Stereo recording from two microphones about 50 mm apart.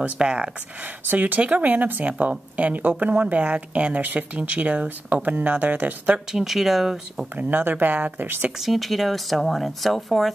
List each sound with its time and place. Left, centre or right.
0.0 s speech: right
1.1 s speech: right
6.3 s speech: centre
7.3 s speech: right
8.5 s speech: centre